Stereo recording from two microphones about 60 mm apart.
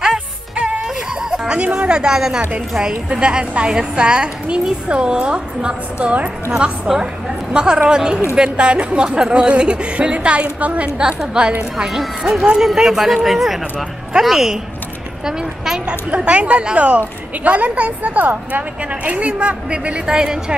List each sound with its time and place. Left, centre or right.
0.8 s whimper: centre
1.6 s a woman's voice: right
11.7 s a woman's voice: centre